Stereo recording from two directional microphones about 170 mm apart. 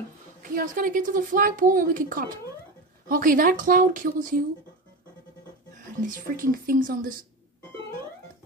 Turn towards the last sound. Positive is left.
turn(degrees=-55)  # may be behind; listen again after turning